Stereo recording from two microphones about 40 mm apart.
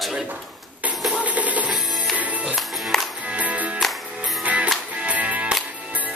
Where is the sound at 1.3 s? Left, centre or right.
Right.